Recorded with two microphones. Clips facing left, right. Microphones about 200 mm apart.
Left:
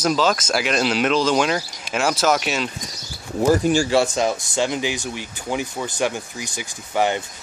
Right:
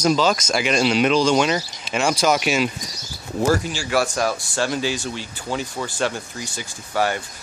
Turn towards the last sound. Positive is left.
turn(degrees=20)  # may be behind; listen again after turning